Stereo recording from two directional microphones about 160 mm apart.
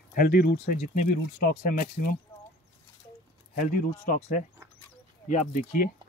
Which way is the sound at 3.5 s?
55° left (ahead or behind).